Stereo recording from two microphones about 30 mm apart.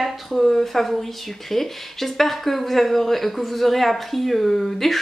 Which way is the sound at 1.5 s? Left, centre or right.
Centre.